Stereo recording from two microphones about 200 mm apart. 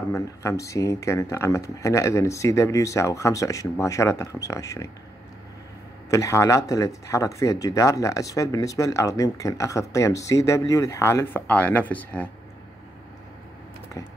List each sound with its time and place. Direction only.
0.1 s speech: 15° left (ahead or behind)
6.0 s speech: 15° left (ahead or behind)